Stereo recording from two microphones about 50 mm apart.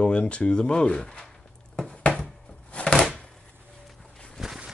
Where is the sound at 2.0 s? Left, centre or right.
Left.